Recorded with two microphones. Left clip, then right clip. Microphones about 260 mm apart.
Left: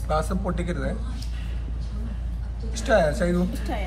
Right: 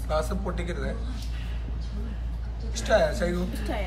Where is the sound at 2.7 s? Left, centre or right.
Centre.